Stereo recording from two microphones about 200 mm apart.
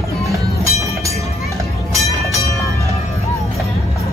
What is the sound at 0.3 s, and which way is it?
Music, 15° right (ahead or behind).